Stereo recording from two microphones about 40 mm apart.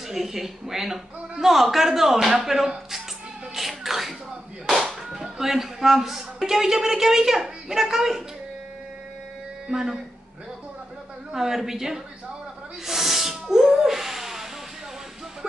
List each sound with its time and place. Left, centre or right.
0.1 s speech: centre
3.5 s a sound: centre
4.6 s speech: centre
9.7 s speech: centre
11.3 s speech: centre
12.8 s a sound: centre